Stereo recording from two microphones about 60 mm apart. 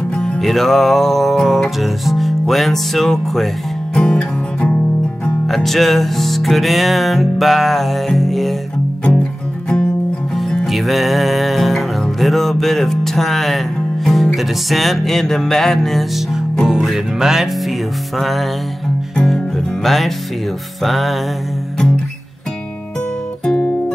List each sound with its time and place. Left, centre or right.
0.1 s music: centre
0.4 s music: centre
5.5 s music: centre
10.3 s music: centre
23.4 s guitar: centre